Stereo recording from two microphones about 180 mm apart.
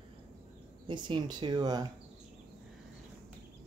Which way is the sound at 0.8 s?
25° right (ahead or behind).